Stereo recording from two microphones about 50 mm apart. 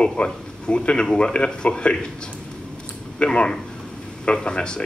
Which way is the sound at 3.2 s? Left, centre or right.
Centre.